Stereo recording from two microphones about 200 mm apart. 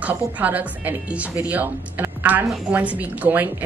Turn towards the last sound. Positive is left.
turn(degrees=-10)  # may be behind; listen again after turning